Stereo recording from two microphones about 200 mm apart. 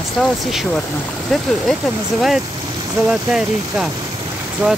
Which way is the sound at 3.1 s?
Centre (ahead or behind).